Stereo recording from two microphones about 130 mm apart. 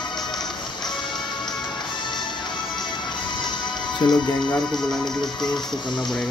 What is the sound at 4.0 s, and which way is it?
Music, 35° left (ahead or behind).